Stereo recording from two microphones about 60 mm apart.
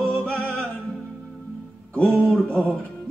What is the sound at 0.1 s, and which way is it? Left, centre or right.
Music, centre.